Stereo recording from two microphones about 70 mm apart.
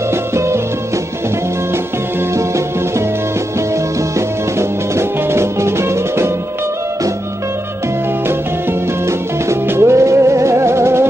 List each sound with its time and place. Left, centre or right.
0.1 s music: right
4.6 s music: right
9.5 s music: right